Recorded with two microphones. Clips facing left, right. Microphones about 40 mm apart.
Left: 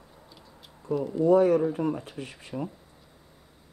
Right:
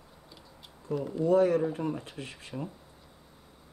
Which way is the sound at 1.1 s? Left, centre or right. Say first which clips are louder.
Left 5 dB; left.